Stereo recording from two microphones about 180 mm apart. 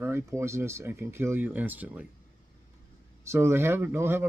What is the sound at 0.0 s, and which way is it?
Speech, 15° right (ahead or behind).